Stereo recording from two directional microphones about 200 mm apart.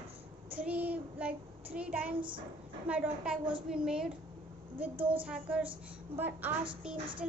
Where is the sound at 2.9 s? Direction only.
5° right (ahead or behind).